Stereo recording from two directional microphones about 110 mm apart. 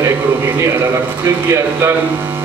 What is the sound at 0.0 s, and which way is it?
A man's voice, 25° right (ahead or behind).